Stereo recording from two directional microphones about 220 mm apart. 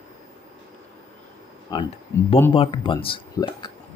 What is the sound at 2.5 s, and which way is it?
Speech, 25° left (ahead or behind).